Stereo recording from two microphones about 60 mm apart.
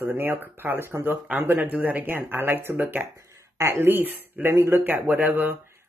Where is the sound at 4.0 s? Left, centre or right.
Right.